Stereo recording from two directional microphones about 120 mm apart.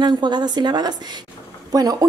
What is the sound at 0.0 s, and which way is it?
A woman's voice, 40° right (ahead or behind).